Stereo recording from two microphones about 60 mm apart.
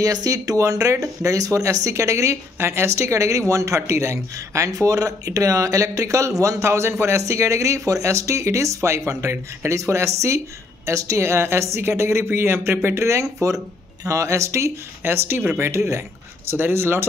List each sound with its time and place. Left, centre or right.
0.0 s speech: right
2.6 s speech: right
15.0 s speech: right
15.6 s speech: right